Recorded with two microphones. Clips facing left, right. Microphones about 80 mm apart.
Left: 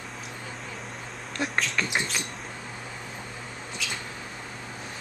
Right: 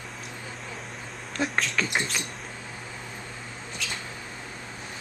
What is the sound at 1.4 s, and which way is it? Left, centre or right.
Rodents, centre.